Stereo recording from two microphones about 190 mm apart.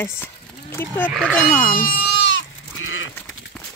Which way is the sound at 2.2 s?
70° left (ahead or behind).